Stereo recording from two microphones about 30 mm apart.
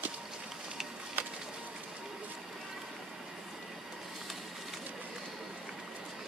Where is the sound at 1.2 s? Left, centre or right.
Right.